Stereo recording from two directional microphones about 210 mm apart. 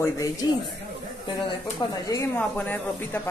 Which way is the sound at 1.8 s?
15° left (ahead or behind).